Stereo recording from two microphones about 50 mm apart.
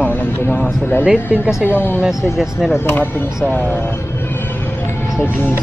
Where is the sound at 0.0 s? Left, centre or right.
Left.